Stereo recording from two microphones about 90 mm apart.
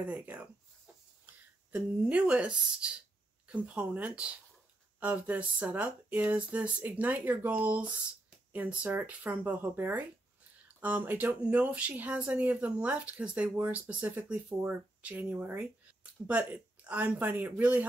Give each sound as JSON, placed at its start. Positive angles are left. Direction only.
{"t": 0.0, "sound": "speech", "side_deg": -15}